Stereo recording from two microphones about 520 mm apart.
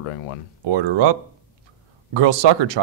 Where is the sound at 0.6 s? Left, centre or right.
Right.